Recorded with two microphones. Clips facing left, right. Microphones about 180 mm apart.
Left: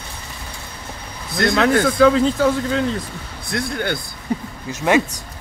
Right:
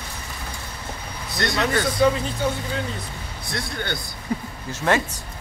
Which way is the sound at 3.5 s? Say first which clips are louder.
Left 6 dB; 50° left (ahead or behind).